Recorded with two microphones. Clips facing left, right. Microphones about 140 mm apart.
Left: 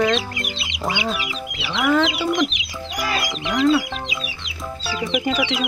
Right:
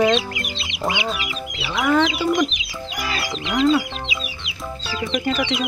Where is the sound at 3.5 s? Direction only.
20° right (ahead or behind).